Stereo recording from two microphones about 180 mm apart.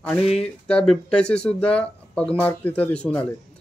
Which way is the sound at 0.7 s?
5° left (ahead or behind).